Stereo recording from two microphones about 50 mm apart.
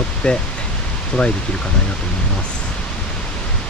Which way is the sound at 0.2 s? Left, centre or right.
Centre.